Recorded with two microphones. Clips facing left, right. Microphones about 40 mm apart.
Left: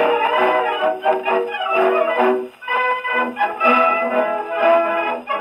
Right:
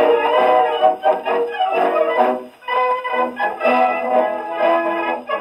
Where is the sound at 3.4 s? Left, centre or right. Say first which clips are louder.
Left 2 dB; left.